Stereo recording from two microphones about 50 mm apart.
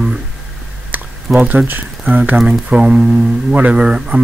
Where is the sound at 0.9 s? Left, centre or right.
Right.